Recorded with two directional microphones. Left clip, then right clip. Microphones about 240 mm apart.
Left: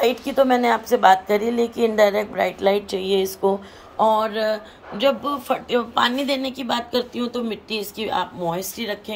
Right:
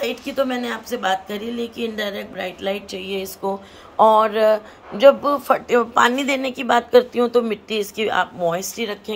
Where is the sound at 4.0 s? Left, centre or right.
Centre.